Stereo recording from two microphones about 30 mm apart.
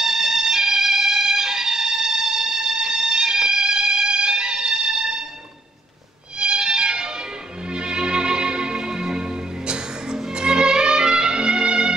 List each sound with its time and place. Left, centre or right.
0.0 s violin: centre
6.4 s music: right